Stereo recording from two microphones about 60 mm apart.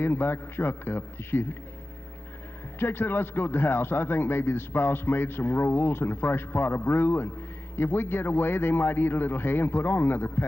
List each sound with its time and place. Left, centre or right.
0.0 s speech: left
2.8 s speech: left